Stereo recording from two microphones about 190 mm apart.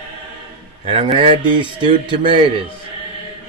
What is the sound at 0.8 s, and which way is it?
A man's voice, 30° right (ahead or behind).